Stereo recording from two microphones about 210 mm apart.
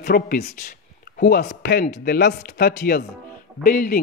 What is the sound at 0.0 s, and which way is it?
A man's voice, 45° left (ahead or behind).